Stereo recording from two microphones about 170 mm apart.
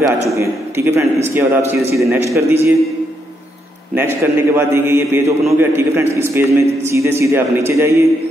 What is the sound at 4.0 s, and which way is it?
A man's voice, 15° right (ahead or behind).